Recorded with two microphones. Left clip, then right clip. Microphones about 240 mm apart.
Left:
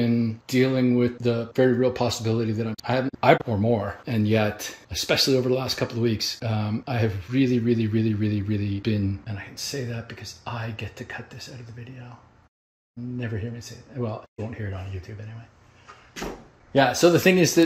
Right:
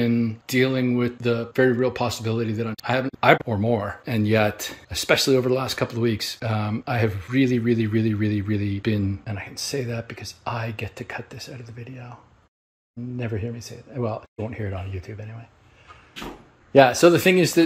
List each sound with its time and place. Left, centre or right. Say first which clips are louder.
0.0 s speech: right 2 dB; centre
13.2 s speech: right 5 dB; centre
16.7 s speech: right 4 dB; centre
17.2 s speech: right 1 dB; centre